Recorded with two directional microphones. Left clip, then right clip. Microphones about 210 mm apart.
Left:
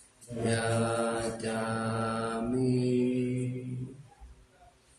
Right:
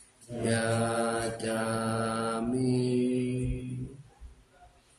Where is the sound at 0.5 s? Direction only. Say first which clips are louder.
Right 1 dB; 20° right (ahead or behind).